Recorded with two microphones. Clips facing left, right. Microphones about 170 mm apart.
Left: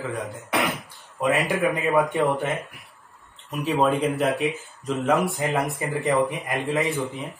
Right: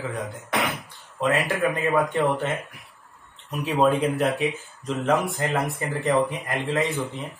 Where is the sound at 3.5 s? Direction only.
Centre (ahead or behind).